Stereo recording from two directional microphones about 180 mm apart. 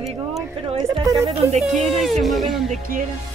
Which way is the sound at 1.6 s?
Centre (ahead or behind).